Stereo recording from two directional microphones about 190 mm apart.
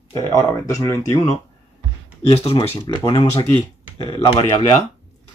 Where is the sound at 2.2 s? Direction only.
30° left (ahead or behind).